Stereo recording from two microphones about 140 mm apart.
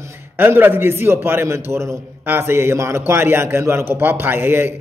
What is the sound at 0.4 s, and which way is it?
A man's voice, 15° right (ahead or behind).